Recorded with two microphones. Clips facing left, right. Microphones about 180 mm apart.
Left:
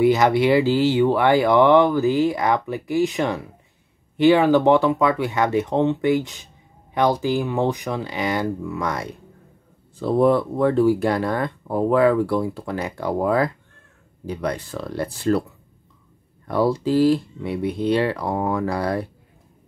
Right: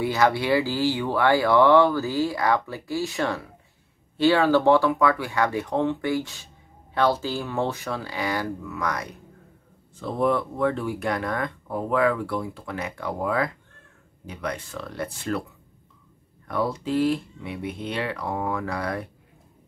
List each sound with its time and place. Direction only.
0.0 s speech: 20° left (ahead or behind); by 15.4 s 35° left (ahead or behind)
16.4 s speech: 35° left (ahead or behind)